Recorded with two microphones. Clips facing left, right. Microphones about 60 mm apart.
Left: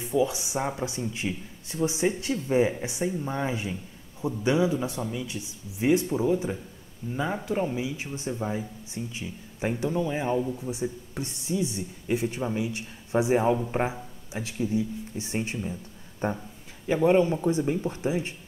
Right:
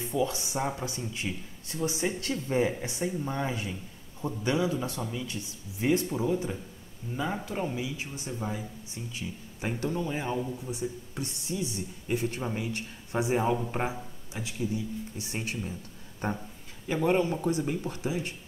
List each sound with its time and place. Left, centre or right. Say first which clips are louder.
0.0 s speech: left 4 dB; centre
13.6 s speech: left 4 dB; centre
14.3 s speech: left 5 dB; left
15.6 s a sound: left 3 dB; centre
16.8 s speech: left 5 dB; centre